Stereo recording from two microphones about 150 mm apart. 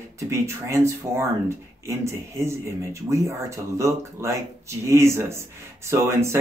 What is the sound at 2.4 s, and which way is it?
A man's voice, 20° right (ahead or behind).